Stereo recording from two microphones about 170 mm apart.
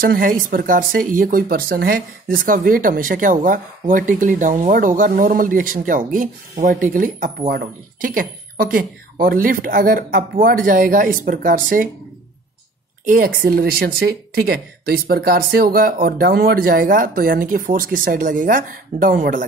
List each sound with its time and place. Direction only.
0.0 s speech: 55° right (ahead or behind)
13.1 s speech: 60° right (ahead or behind)